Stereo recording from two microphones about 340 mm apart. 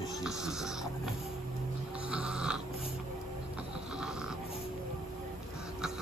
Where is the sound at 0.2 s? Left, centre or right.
Centre.